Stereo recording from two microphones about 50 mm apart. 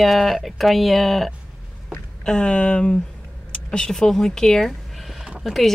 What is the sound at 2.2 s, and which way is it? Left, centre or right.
Speech, centre.